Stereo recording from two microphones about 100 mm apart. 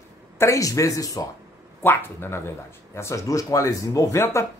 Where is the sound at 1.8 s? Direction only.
20° left (ahead or behind).